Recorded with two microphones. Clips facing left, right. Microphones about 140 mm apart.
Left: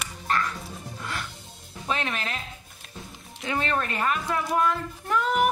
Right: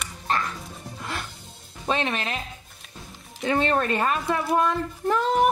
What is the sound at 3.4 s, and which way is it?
A child's voice, 35° right (ahead or behind).